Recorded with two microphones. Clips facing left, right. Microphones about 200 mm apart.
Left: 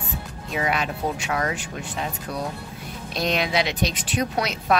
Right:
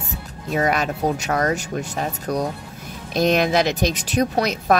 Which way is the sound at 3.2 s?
45° right (ahead or behind).